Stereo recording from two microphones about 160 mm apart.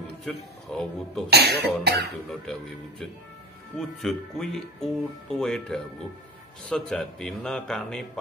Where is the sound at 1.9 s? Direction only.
90° right.